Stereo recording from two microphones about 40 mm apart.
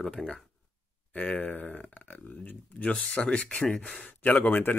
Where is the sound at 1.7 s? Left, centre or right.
Left.